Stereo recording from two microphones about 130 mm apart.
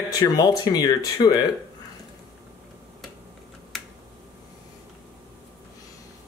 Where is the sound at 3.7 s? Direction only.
Centre (ahead or behind).